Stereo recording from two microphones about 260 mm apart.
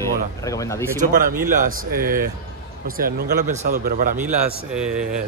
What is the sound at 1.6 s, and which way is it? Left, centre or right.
A man's voice, right.